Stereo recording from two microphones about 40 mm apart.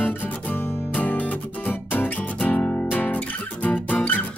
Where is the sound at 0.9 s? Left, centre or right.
Left.